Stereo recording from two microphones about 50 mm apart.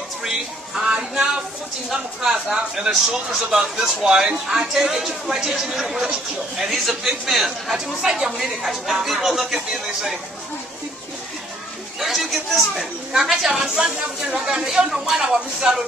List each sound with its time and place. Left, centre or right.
0.2 s a sound: centre
0.9 s speech: centre
12.0 s speech: centre